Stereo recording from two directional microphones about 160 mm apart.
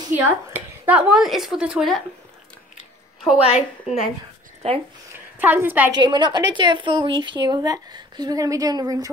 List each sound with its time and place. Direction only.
0.5 s speech: 10° right (ahead or behind)
3.4 s a woman's voice: 40° left (ahead or behind)
4.6 s speech: 40° right (ahead or behind)
5.4 s a woman's voice: 10° right (ahead or behind)
5.9 s a woman's voice: 25° right (ahead or behind)